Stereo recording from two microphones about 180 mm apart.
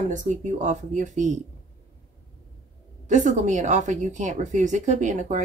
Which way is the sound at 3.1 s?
45° right (ahead or behind).